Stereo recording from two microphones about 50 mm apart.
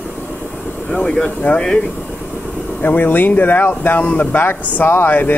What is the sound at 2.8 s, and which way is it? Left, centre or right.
Speech, left.